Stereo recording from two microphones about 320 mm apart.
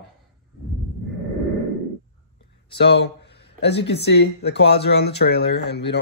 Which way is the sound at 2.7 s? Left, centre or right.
Left.